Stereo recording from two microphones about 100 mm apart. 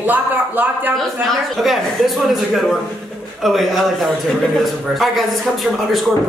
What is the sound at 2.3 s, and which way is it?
A man's voice, centre (ahead or behind).